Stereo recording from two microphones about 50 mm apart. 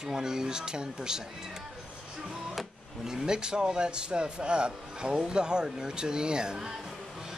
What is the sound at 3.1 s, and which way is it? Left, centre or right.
Speech, centre.